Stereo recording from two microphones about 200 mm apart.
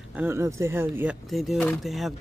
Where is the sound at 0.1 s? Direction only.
10° right (ahead or behind).